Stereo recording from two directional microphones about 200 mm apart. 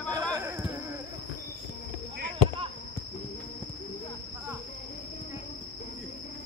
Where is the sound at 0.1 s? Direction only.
15° right (ahead or behind).